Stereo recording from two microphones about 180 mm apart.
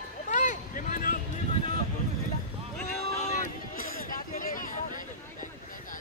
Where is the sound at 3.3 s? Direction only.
50° left (ahead or behind).